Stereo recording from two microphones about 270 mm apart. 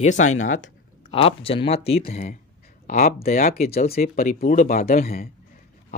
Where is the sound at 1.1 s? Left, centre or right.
Left.